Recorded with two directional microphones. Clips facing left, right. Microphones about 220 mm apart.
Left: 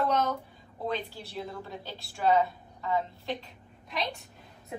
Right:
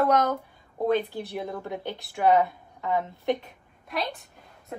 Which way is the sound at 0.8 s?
55° right (ahead or behind).